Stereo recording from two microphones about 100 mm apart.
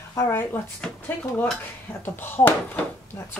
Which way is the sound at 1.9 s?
20° left (ahead or behind).